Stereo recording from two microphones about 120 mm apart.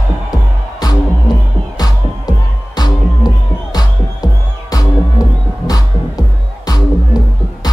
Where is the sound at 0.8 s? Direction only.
35° left (ahead or behind).